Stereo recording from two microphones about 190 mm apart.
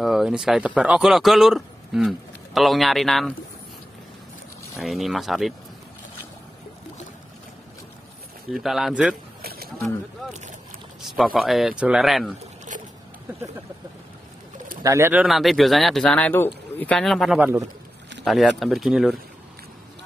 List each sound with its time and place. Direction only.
0.0 s speech: centre (ahead or behind)
4.7 s speech: centre (ahead or behind)
8.5 s speech: centre (ahead or behind)
9.4 s a sound: 55° right (ahead or behind)
11.0 s speech: centre (ahead or behind)
14.8 s speech: 15° right (ahead or behind)
15.2 s speech: centre (ahead or behind)
17.4 s speech: 10° right (ahead or behind)
18.2 s speech: centre (ahead or behind)